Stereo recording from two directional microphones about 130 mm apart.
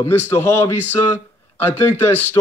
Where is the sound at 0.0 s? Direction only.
20° left (ahead or behind).